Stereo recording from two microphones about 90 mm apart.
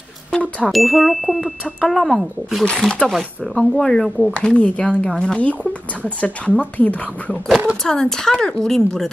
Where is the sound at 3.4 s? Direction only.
5° left (ahead or behind).